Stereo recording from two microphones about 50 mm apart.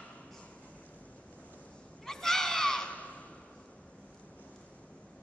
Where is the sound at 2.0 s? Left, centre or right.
Centre.